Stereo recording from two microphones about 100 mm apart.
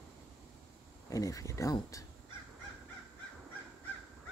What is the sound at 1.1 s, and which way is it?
Speech, 35° left (ahead or behind).